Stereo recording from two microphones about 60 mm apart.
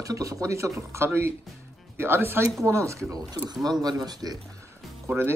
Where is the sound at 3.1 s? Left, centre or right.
Right.